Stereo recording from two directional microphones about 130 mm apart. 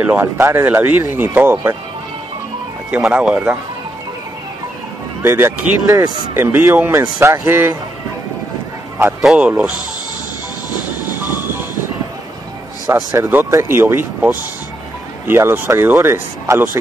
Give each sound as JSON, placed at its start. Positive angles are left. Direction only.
{"t": 0.0, "sound": "speech", "side_deg": -15}
{"t": 2.9, "sound": "speech", "side_deg": -10}
{"t": 5.2, "sound": "speech", "side_deg": -20}
{"t": 9.2, "sound": "speech", "side_deg": -5}
{"t": 11.1, "sound": "train", "side_deg": 30}
{"t": 12.8, "sound": "speech", "side_deg": -30}
{"t": 13.2, "sound": "speech", "side_deg": -15}